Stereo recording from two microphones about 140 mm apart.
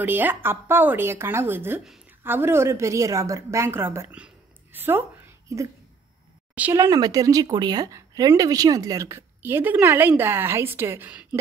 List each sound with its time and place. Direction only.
0.0 s a woman's voice: 15° right (ahead or behind)
6.8 s speech: 25° right (ahead or behind)